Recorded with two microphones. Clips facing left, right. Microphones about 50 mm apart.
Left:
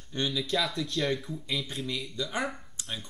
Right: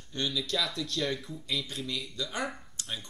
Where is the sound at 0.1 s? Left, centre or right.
Centre.